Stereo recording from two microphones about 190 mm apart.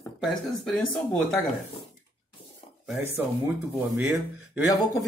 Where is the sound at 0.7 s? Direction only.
Centre (ahead or behind).